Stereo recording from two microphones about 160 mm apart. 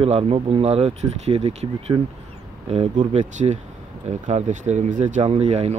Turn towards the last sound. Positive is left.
turn(degrees=-45)  # may be behind; listen again after turning